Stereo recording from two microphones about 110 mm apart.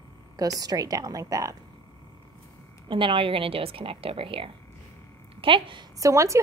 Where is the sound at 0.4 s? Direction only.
35° right (ahead or behind).